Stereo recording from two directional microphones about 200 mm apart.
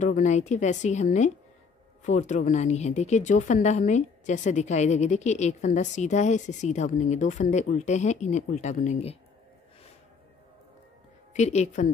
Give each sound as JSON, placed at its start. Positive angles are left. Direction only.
{"t": 0.0, "sound": "a woman's voice", "side_deg": 35}
{"t": 11.3, "sound": "a woman's voice", "side_deg": 35}